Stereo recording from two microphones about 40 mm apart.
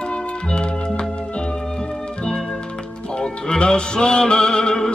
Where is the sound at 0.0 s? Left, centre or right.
Left.